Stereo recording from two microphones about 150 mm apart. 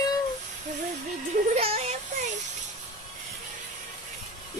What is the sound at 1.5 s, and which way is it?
Music, 45° right (ahead or behind).